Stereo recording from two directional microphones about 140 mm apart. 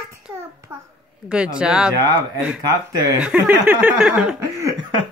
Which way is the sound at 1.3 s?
5° right (ahead or behind).